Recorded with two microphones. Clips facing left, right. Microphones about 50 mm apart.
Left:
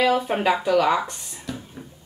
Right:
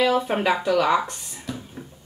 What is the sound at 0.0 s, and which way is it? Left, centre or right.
Speech, centre.